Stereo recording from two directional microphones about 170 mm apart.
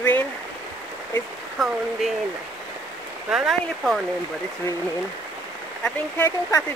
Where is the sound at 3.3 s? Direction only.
5° right (ahead or behind).